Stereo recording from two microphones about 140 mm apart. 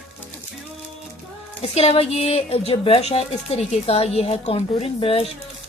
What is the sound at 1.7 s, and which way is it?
A woman's voice, 45° left (ahead or behind).